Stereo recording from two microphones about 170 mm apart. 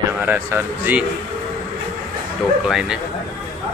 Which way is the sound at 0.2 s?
10° right (ahead or behind).